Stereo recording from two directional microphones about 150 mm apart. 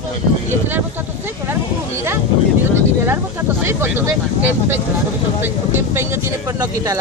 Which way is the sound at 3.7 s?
15° right (ahead or behind).